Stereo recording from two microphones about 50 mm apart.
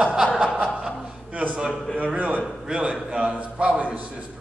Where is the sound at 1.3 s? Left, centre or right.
Right.